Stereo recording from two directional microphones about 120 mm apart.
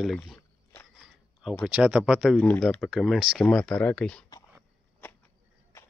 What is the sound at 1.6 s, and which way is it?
Speech, 10° right (ahead or behind).